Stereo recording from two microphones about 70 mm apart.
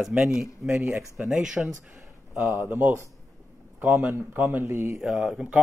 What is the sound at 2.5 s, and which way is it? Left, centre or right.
Speech, right.